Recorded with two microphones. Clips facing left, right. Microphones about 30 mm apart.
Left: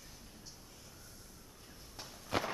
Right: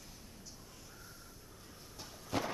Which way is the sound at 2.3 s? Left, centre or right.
Left.